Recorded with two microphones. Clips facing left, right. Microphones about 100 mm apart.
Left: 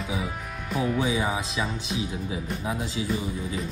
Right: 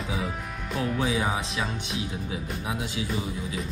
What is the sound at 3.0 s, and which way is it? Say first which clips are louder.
Speech: left 5 dB; 30° left (ahead or behind).